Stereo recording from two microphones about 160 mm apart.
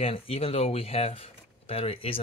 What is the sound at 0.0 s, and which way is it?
Speech, 35° left (ahead or behind).